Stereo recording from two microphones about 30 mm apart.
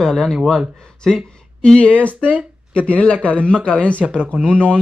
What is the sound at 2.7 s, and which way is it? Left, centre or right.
Speech, left.